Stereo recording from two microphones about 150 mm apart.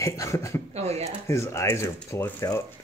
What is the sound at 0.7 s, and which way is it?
Speech, 45° right (ahead or behind).